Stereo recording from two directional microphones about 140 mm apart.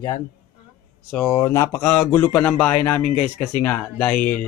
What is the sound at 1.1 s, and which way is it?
Speech, 15° left (ahead or behind).